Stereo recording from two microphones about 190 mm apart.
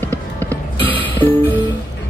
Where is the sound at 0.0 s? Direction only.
10° left (ahead or behind).